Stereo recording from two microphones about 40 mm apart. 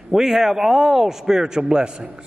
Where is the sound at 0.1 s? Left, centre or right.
Centre.